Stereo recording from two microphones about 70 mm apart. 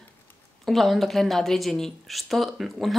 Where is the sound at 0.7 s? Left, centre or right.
Centre.